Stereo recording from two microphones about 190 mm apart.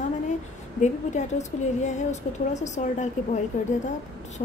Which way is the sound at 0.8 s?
40° left (ahead or behind).